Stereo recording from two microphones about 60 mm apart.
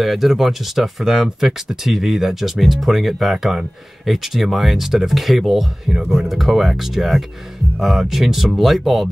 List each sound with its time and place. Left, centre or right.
0.0 s speech: centre